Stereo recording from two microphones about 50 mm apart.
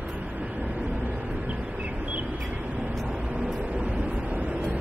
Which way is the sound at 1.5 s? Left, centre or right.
Right.